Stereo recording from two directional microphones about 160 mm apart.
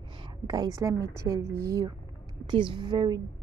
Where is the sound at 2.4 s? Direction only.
30° right (ahead or behind).